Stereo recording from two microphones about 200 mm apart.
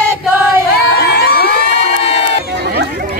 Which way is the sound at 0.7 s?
50° left (ahead or behind).